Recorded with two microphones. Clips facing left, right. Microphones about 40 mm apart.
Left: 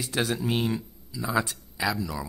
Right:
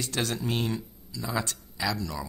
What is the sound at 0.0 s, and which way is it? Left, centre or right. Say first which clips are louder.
Speech: left 3 dB; centre.